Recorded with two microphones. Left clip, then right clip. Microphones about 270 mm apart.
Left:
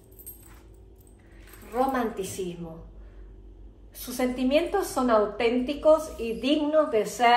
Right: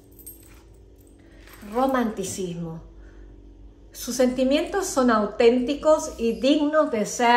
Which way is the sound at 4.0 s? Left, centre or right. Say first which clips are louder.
Right 7 dB; right.